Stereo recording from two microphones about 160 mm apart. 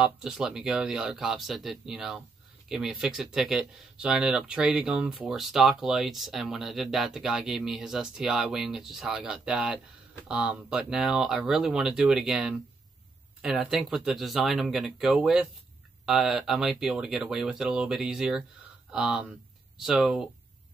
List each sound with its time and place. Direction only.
0.0 s speech: 5° right (ahead or behind)